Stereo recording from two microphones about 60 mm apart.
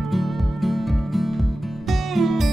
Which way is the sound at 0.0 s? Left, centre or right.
Centre.